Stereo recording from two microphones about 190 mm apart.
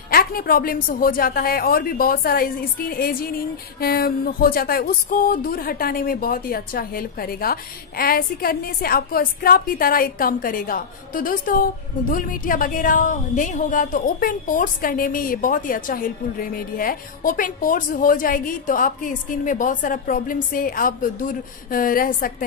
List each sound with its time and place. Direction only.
0.1 s speech: 50° left (ahead or behind)